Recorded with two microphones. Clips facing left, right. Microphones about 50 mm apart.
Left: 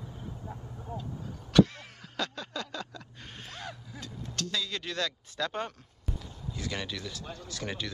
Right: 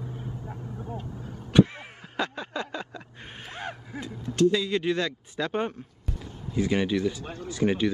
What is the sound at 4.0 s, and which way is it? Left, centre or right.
Speech, right.